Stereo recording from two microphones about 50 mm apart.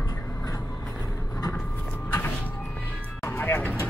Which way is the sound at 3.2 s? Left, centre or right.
Left.